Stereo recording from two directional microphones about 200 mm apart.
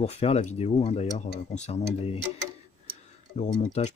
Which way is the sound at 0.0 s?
30° left (ahead or behind).